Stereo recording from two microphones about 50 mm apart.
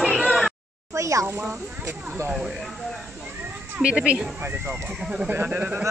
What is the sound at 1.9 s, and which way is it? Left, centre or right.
Speech, right.